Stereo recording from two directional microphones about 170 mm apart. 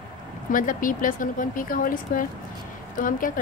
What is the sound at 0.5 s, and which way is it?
A woman's voice, 50° left (ahead or behind).